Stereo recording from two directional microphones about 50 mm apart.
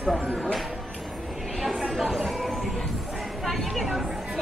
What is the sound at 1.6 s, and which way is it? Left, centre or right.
Music, centre.